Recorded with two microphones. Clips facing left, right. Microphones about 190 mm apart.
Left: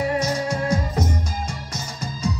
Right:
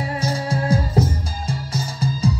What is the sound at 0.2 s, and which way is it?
Music, 30° right (ahead or behind).